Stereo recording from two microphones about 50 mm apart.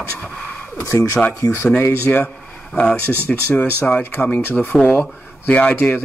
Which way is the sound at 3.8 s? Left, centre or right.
Left.